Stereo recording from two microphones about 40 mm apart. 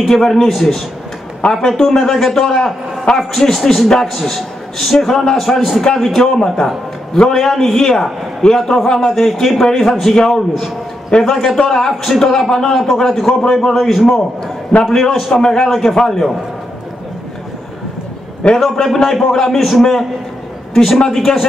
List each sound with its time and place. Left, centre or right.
0.0 s a man's voice: centre
11.5 s a man's voice: centre
12.8 s a man's voice: centre
18.4 s a man's voice: left
19.0 s a man's voice: centre